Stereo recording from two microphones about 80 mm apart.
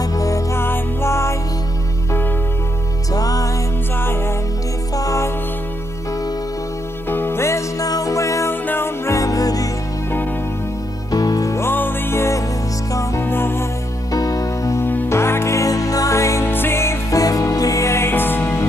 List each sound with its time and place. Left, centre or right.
0.0 s music: left
3.2 s music: left
4.9 s music: left
7.1 s music: left
7.8 s music: left
11.1 s music: left
11.6 s music: left
14.1 s music: left
14.9 s music: left
17.2 s music: left